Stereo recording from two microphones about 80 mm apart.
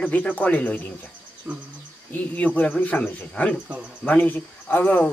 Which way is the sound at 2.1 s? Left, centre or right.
Left.